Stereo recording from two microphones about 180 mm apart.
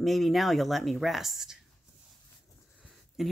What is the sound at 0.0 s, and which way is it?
Speech, centre (ahead or behind).